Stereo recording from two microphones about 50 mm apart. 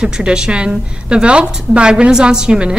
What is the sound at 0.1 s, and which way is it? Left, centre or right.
A woman's voice, centre.